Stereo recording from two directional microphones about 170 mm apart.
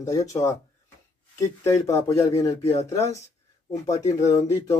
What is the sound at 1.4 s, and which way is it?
Speech, 15° left (ahead or behind).